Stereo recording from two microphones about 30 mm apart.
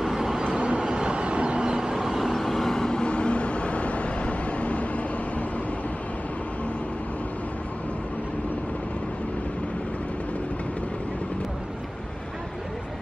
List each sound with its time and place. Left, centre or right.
0.0 s train: centre
0.6 s train: right
0.8 s vehicle: right
1.6 s vehicle: right
2.0 s vehicle: centre
2.3 s vehicle: centre
2.7 s vehicle: centre
3.0 s vehicle: left